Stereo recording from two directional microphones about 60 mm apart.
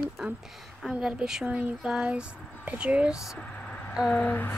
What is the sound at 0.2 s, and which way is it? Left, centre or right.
A woman's voice, centre.